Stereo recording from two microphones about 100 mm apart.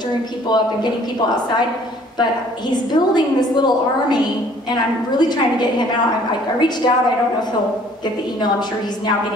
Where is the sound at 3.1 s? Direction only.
45° left (ahead or behind).